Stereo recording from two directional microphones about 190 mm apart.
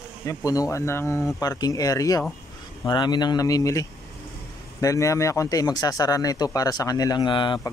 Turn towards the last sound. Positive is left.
turn(degrees=25)  # may be behind; listen again after turning